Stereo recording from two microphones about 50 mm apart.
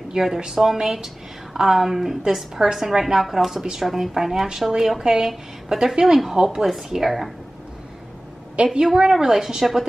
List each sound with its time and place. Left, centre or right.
0.1 s a woman's voice: centre
8.6 s a woman's voice: right